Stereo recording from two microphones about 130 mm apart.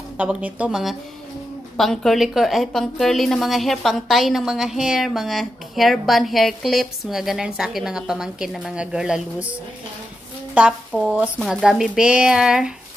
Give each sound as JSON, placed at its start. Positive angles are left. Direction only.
{"t": 0.2, "sound": "a woman's voice", "side_deg": -10}